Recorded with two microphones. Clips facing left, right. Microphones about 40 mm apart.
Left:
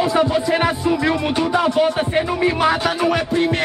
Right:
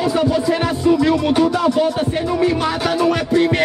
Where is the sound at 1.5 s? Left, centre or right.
Left.